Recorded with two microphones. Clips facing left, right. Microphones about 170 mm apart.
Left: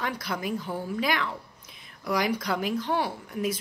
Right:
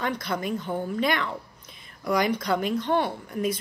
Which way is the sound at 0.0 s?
5° left (ahead or behind).